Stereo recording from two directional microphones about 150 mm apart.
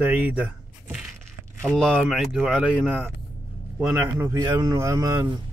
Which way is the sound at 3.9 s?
15° right (ahead or behind).